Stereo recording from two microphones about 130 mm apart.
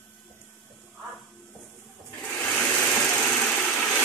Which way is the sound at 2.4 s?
10° left (ahead or behind).